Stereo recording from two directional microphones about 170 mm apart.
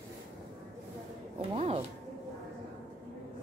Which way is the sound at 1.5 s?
35° right (ahead or behind).